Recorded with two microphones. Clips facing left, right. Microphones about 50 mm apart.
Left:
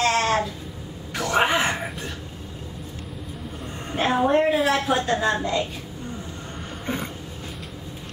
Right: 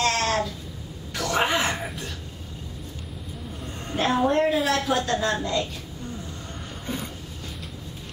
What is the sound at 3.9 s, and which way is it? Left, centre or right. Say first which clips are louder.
Female singing: left 2 dB; centre.